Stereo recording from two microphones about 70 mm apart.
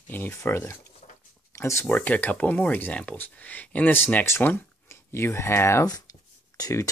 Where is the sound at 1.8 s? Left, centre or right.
Left.